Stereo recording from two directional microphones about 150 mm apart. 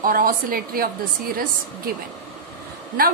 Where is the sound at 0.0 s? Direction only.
70° right (ahead or behind).